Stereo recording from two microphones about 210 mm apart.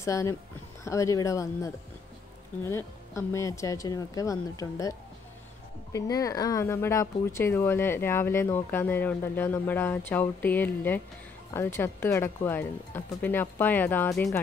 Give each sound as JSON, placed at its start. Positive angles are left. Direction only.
{"t": 0.0, "sound": "speech", "side_deg": 15}
{"t": 5.9, "sound": "speech", "side_deg": 15}